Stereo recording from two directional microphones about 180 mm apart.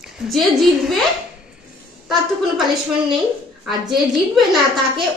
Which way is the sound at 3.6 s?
Centre (ahead or behind).